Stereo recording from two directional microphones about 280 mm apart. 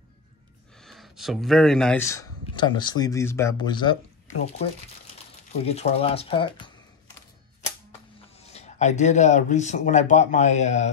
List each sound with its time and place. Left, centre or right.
0.7 s speech: centre
5.5 s speech: left
8.4 s speech: left